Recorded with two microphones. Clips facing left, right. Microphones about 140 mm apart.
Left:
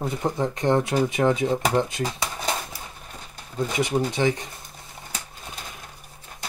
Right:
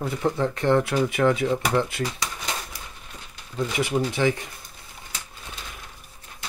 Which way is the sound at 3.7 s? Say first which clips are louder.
Left 1 dB; 20° left (ahead or behind).